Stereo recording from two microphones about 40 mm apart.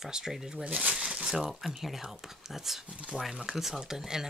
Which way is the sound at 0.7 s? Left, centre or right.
Right.